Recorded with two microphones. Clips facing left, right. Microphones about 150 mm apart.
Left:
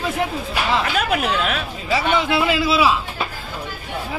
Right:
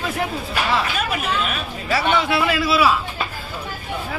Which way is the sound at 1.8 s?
20° left (ahead or behind).